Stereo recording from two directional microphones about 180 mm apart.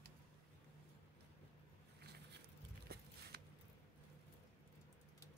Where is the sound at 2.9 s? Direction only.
65° right (ahead or behind).